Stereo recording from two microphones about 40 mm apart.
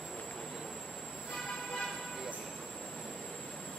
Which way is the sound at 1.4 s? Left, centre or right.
Centre.